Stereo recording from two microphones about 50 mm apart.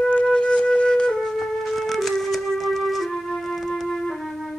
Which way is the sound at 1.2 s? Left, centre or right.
Centre.